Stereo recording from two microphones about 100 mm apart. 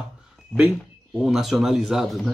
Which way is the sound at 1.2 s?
5° right (ahead or behind).